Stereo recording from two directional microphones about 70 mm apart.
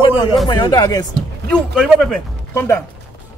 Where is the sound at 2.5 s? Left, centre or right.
Left.